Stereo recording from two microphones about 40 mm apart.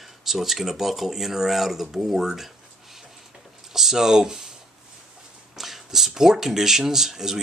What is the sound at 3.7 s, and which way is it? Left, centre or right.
Speech, centre.